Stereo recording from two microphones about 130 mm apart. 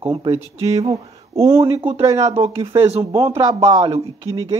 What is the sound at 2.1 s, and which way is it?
Speech, 55° right (ahead or behind).